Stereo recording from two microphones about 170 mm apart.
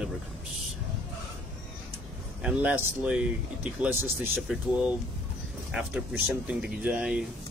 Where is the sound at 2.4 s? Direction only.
10° right (ahead or behind).